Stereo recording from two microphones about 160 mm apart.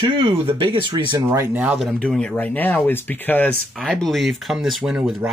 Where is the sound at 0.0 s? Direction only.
35° right (ahead or behind); by 2.0 s 5° right (ahead or behind).